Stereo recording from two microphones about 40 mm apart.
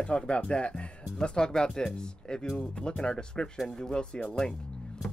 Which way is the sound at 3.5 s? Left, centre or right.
Centre.